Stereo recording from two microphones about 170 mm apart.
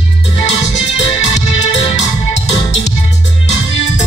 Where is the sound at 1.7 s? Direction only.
40° left (ahead or behind).